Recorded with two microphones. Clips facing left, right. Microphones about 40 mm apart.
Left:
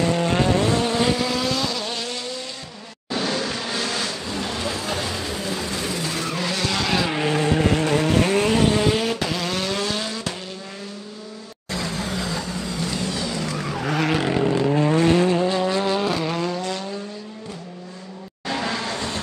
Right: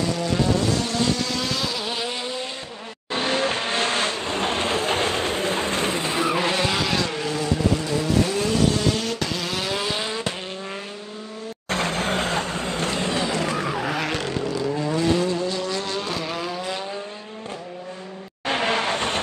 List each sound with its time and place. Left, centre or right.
0.1 s vehicle: left
0.7 s vehicle: left; by 2.4 s right
3.1 s vehicle: right
6.8 s vehicle: centre
7.2 s vehicle: left
7.6 s vehicle: left
8.6 s vehicle: left
9.2 s vehicle: centre; by 10.3 s right
11.7 s vehicle: right
13.6 s vehicle: centre
14.4 s vehicle: left; by 16.7 s centre
18.5 s vehicle: right